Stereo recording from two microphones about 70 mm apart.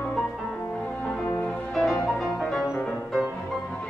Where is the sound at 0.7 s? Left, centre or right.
Centre.